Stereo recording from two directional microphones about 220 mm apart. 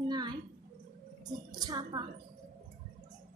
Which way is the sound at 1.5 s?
20° right (ahead or behind).